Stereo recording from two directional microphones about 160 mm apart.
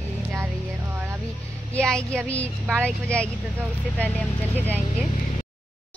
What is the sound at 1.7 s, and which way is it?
A woman's voice, 5° left (ahead or behind).